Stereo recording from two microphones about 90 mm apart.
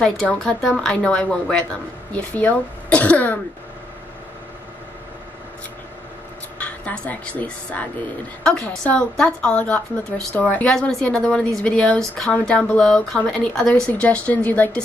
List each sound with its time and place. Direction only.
0.0 s a woman's voice: 10° left (ahead or behind)
6.6 s a woman's voice: 15° left (ahead or behind)